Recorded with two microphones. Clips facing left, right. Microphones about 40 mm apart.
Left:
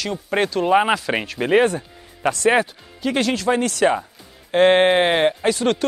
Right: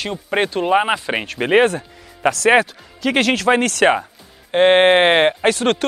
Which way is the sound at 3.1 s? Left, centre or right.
Right.